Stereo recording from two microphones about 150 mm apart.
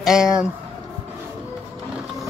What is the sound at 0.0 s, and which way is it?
Speech, 5° right (ahead or behind).